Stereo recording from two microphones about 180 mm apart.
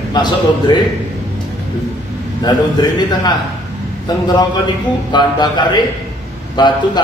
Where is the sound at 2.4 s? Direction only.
25° left (ahead or behind).